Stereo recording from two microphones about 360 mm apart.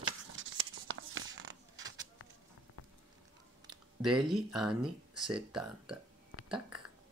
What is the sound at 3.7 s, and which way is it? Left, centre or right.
Speech, centre.